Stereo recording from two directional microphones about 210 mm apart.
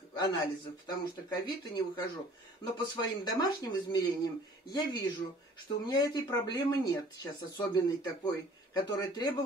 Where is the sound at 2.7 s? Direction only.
20° left (ahead or behind).